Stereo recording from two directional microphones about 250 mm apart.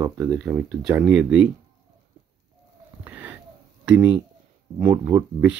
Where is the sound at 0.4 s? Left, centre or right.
Centre.